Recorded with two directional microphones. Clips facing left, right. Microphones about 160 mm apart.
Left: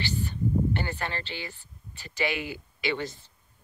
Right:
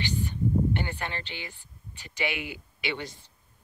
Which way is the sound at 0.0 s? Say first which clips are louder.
Right 1 dB; 15° right (ahead or behind).